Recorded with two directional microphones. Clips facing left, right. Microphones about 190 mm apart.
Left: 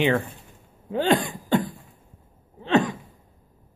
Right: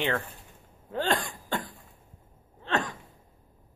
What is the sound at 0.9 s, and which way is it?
Cough, 15° left (ahead or behind).